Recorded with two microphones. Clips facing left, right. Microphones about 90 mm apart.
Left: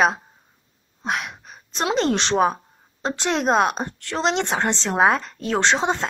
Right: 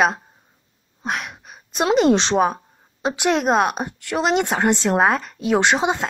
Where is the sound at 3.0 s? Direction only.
10° right (ahead or behind).